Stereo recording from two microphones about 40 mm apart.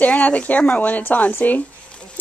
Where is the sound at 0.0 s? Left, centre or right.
Left.